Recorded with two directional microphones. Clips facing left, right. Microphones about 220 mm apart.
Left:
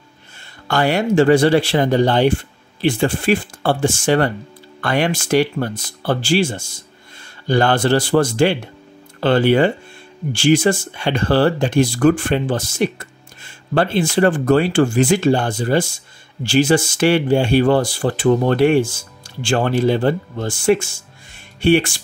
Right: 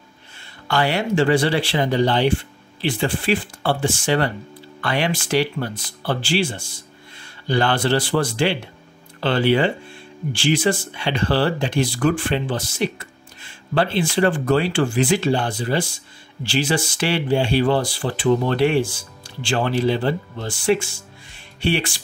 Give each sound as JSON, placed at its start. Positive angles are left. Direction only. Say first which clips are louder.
{"t": 0.7, "sound": "speech", "louder": "left 4 dB", "side_deg": 45}